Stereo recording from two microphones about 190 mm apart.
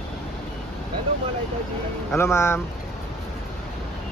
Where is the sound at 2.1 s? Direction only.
15° left (ahead or behind).